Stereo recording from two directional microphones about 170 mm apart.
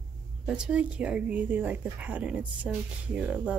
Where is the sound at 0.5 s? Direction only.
5° right (ahead or behind).